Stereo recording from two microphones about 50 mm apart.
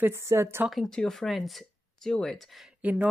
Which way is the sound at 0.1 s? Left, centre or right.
Right.